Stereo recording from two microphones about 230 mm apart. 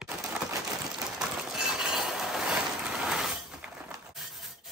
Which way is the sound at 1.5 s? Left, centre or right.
Centre.